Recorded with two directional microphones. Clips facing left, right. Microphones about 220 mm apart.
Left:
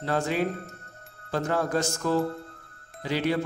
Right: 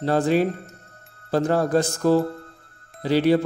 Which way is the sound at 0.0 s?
35° right (ahead or behind).